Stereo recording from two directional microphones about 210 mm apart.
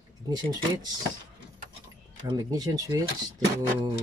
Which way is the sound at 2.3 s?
20° right (ahead or behind).